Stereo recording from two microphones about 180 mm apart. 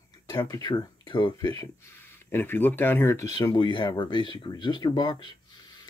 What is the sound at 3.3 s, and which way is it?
Speech, 25° left (ahead or behind).